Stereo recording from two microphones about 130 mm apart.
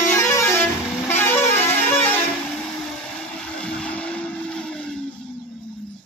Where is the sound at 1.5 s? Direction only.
15° left (ahead or behind).